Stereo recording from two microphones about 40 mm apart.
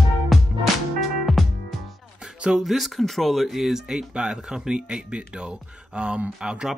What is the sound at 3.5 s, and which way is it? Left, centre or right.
Speech, centre.